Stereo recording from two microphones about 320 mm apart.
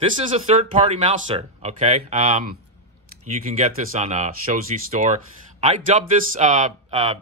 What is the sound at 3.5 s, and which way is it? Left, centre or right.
Speech, right.